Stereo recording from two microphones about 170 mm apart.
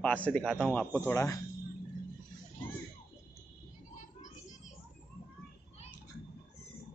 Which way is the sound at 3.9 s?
45° left (ahead or behind).